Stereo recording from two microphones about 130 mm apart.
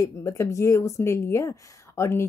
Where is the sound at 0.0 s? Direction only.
25° left (ahead or behind).